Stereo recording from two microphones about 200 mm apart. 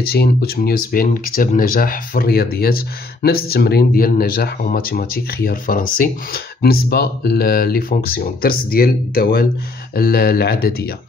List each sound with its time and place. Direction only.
0.0 s speech: 50° left (ahead or behind)